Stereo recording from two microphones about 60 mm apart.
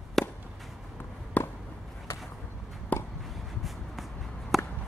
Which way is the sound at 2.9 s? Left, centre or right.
Left.